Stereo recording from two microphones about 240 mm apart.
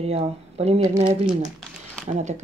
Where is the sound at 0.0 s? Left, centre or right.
Right.